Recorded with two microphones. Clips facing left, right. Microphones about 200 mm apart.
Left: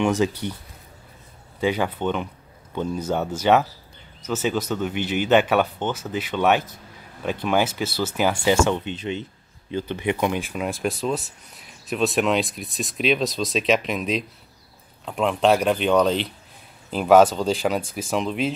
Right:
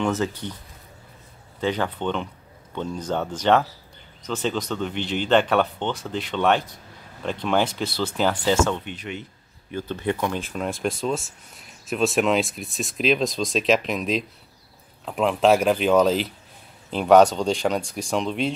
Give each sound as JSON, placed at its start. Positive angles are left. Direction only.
{"t": 0.0, "sound": "speech", "side_deg": 15}
{"t": 1.6, "sound": "speech", "side_deg": 10}
{"t": 9.8, "sound": "speech", "side_deg": 15}